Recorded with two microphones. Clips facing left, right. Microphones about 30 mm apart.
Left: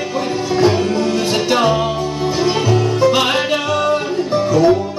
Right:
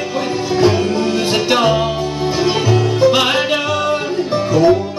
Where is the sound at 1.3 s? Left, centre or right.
Right.